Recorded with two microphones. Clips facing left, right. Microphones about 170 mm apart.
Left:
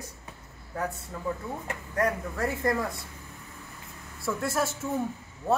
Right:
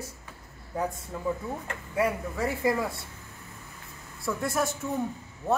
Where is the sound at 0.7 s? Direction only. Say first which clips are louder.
Right 2 dB; 15° right (ahead or behind).